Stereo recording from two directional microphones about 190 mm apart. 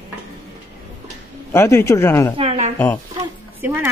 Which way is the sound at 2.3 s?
35° right (ahead or behind).